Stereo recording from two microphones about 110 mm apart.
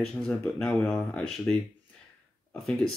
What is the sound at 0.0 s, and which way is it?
Speech, 5° left (ahead or behind).